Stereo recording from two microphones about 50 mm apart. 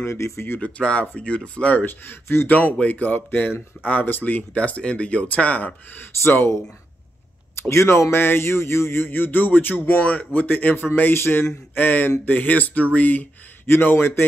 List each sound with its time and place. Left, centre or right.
0.0 s speech: left
0.6 s speech: left
1.8 s speech: left
6.2 s speech: left
7.7 s speech: left
11.1 s speech: left
11.7 s speech: left